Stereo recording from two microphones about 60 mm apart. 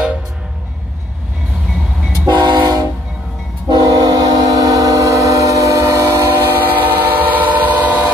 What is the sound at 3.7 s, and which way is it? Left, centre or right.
Train, right.